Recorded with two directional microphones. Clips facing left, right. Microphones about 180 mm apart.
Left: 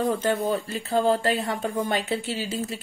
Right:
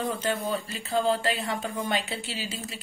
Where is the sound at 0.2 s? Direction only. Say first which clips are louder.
Left 4 dB; 50° left (ahead or behind).